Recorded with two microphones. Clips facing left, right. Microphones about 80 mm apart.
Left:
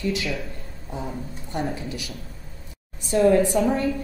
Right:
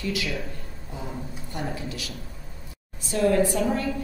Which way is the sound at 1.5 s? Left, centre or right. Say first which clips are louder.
Left 4 dB; left.